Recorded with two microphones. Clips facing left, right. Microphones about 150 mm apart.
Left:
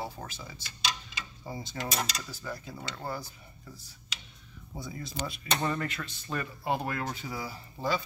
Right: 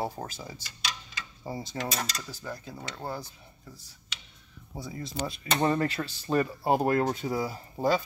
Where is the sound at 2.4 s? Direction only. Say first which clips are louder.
Even; 25° right (ahead or behind).